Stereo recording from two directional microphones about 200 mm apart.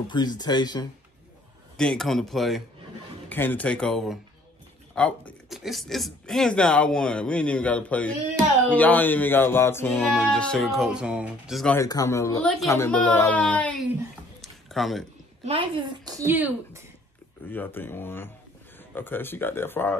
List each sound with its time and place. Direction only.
0.1 s speech: 20° left (ahead or behind)
1.8 s speech: 5° left (ahead or behind)
11.7 s speech: 15° left (ahead or behind)
14.4 s a sound: centre (ahead or behind)
15.4 s a woman's voice: 25° right (ahead or behind)
16.3 s speech: 10° right (ahead or behind)
17.5 s speech: 10° left (ahead or behind)